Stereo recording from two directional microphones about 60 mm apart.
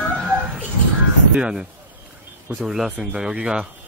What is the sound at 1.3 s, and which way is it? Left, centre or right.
Speech, centre.